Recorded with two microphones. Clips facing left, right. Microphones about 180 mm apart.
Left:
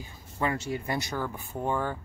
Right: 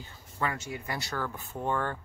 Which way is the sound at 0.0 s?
25° left (ahead or behind).